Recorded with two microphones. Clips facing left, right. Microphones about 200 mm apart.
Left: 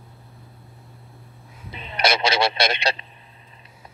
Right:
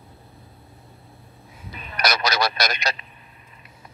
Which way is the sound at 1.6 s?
25° left (ahead or behind).